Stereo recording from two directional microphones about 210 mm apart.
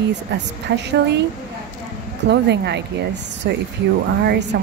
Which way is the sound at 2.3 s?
55° right (ahead or behind).